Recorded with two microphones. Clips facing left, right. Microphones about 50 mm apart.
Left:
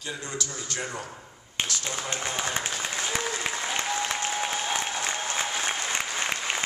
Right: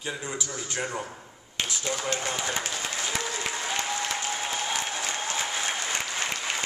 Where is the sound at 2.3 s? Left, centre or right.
Left.